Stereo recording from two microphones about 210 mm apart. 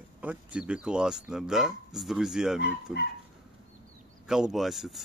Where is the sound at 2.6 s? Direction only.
50° left (ahead or behind).